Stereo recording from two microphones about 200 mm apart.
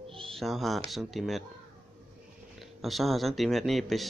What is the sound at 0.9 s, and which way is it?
Speech, centre (ahead or behind).